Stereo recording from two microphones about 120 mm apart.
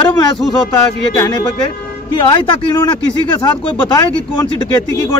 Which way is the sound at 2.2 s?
45° left (ahead or behind).